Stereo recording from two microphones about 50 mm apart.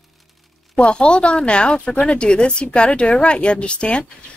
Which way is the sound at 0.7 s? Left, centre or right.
Left.